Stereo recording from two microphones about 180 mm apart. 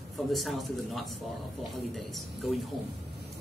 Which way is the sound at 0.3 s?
Centre (ahead or behind).